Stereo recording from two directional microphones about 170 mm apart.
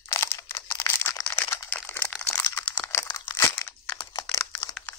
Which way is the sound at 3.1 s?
20° left (ahead or behind).